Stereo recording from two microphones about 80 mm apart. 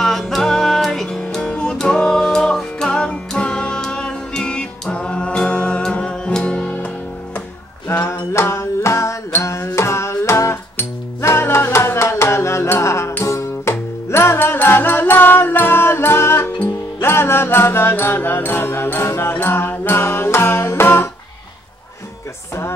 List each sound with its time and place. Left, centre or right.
0.0 s music: centre
8.1 s music: left